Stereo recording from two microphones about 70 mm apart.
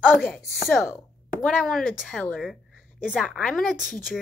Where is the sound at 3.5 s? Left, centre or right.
Centre.